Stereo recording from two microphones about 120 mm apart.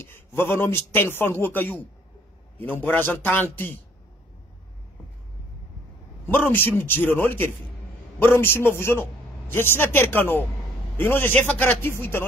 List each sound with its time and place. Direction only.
0.0 s a man's voice: 20° left (ahead or behind)
6.2 s a man's voice: 15° left (ahead or behind)